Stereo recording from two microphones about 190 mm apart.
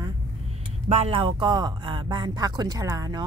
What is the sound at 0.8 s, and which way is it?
Speech, 35° right (ahead or behind).